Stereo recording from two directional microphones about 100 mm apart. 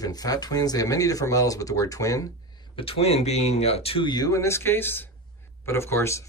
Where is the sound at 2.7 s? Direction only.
75° left (ahead or behind).